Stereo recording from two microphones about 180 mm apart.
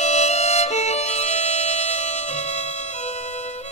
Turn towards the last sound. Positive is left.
turn(degrees=35)  # may be behind; listen again after turning